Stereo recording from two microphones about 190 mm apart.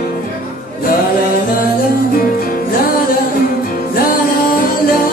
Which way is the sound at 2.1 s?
50° left (ahead or behind).